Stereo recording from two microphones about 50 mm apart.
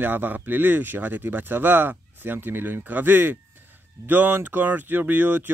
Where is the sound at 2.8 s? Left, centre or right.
Right.